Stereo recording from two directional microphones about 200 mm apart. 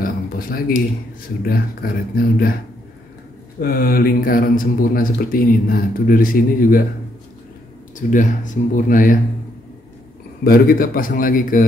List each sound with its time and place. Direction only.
0.0 s a sound: 45° left (ahead or behind)
1.4 s speech: 45° left (ahead or behind)
3.6 s speech: 45° left (ahead or behind)
8.1 s speech: 40° left (ahead or behind)
10.4 s speech: 45° left (ahead or behind)